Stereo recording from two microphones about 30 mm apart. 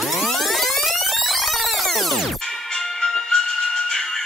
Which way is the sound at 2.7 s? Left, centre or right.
Centre.